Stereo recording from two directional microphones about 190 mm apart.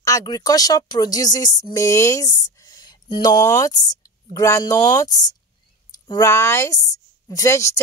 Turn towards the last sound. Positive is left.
turn(degrees=15)  # may be behind; listen again after turning